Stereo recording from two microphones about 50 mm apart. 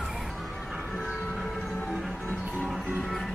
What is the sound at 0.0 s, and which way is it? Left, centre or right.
Crowd, centre.